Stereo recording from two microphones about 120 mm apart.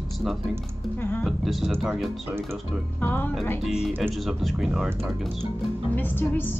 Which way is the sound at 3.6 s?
5° right (ahead or behind).